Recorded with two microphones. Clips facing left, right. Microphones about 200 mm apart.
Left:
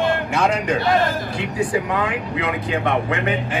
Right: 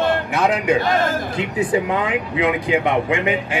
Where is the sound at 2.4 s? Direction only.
15° right (ahead or behind).